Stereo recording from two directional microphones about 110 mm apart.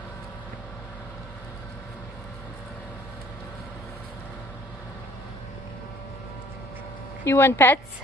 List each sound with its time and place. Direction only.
7.2 s speech: 20° left (ahead or behind)